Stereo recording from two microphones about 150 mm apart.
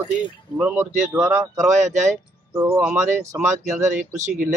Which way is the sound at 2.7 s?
10° right (ahead or behind).